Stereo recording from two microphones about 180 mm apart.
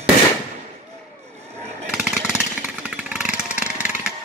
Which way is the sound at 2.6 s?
5° right (ahead or behind).